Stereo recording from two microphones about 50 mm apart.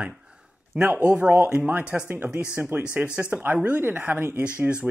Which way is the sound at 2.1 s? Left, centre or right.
Right.